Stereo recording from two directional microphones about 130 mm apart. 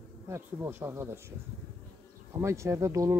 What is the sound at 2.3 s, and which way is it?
Speech, 20° right (ahead or behind).